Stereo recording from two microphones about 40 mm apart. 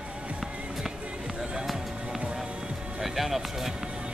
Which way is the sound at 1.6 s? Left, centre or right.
Centre.